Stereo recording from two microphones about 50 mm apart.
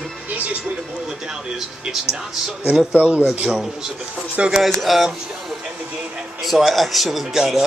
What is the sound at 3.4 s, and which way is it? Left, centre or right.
Speech, centre.